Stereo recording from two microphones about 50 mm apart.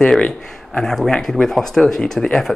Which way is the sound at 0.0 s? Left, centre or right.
Centre.